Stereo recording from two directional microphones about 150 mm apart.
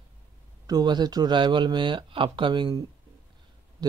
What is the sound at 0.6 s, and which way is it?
Speech, 25° right (ahead or behind).